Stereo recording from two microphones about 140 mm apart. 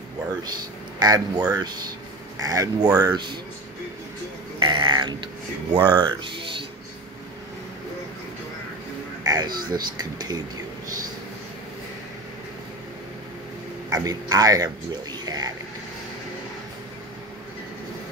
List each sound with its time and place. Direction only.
1.0 s speech: 30° right (ahead or behind)
4.6 s speech: 35° right (ahead or behind)
9.2 s a sound: 25° right (ahead or behind)
9.6 s speech: 30° right (ahead or behind)
13.8 s speech: 25° right (ahead or behind)
15.2 s vehicle: 30° right (ahead or behind)